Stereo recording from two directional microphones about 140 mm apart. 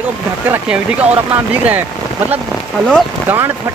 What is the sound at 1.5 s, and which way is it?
Speech, 10° right (ahead or behind).